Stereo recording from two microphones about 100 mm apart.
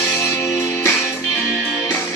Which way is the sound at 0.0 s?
25° left (ahead or behind).